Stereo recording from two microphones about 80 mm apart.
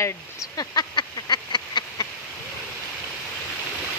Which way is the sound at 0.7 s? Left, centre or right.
Left.